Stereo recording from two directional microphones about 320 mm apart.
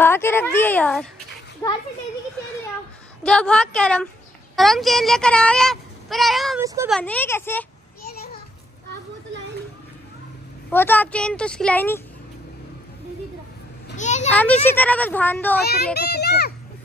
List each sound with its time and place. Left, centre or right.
0.0 s a child's voice: centre
3.3 s speech: centre
7.0 s speech: centre
10.7 s speech: centre
13.8 s a sound: left
14.3 s speech: centre
15.6 s a child's voice: left